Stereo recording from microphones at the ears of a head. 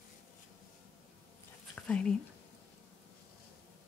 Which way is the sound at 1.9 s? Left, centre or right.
Left.